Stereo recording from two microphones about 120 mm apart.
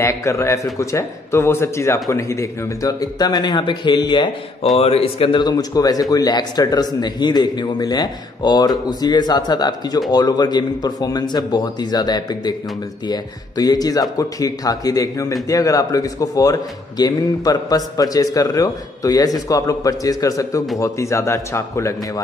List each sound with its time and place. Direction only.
0.0 s a man's voice: 25° left (ahead or behind)
4.7 s speech: 55° left (ahead or behind)
5.4 s a man's voice: 35° left (ahead or behind)